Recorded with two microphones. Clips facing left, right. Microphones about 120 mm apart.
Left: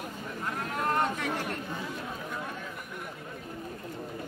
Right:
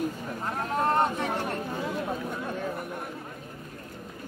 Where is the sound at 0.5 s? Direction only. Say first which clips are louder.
Right 5 dB; 35° right (ahead or behind).